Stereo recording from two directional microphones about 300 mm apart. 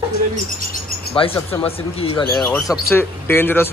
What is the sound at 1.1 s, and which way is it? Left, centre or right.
Speech, centre.